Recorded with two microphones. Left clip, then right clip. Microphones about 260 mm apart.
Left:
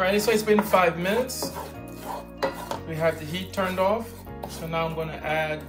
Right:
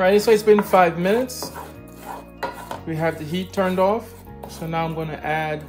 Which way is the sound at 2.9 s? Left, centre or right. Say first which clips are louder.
Right 2 dB; right.